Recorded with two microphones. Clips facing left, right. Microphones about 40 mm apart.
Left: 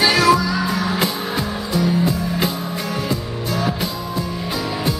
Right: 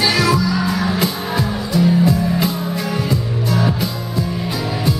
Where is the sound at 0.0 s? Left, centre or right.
Centre.